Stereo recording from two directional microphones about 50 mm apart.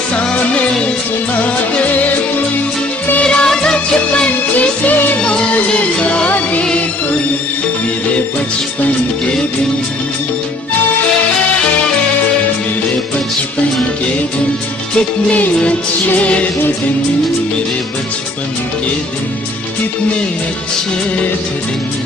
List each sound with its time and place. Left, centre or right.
0.1 s music: left
3.3 s music: centre
4.3 s music: left
5.2 s music: centre
15.0 s music: left